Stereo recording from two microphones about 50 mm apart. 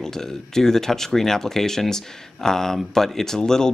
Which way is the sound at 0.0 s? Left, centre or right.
Centre.